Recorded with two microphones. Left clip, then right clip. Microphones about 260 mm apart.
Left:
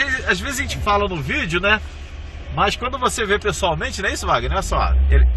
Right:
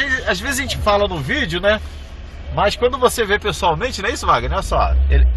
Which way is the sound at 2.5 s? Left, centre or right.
Centre.